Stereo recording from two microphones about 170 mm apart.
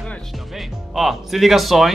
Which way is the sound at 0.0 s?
Centre (ahead or behind).